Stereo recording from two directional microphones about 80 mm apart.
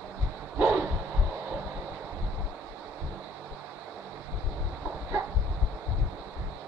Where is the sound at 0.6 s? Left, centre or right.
Centre.